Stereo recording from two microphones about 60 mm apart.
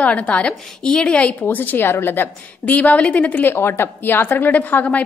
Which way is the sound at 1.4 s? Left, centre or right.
Left.